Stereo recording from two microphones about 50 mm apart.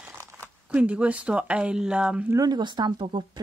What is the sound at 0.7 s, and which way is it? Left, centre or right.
Speech, right.